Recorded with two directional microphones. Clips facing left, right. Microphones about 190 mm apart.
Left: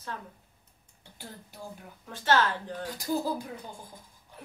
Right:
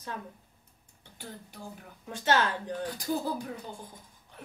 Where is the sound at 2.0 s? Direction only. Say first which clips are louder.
Left 1 dB; 15° right (ahead or behind).